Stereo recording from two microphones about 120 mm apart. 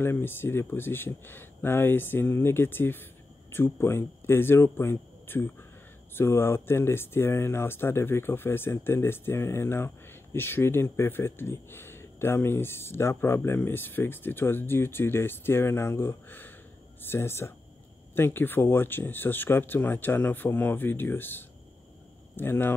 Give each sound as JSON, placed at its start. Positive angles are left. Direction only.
{"t": 0.0, "sound": "speech", "side_deg": 20}